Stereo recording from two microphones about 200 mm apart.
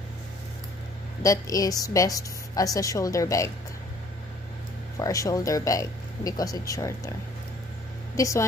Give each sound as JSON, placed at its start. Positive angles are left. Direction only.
{"t": 1.2, "sound": "a woman's voice", "side_deg": 15}
{"t": 4.9, "sound": "a woman's voice", "side_deg": 15}
{"t": 8.2, "sound": "a woman's voice", "side_deg": 15}